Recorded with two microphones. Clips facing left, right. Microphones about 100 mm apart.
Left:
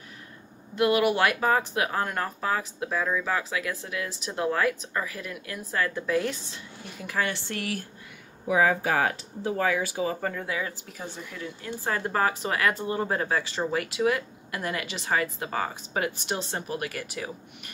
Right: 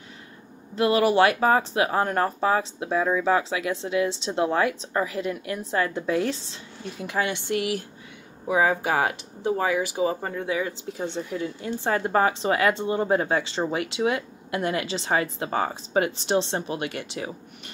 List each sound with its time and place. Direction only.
0.7 s speech: 30° right (ahead or behind)
7.1 s speech: 20° right (ahead or behind)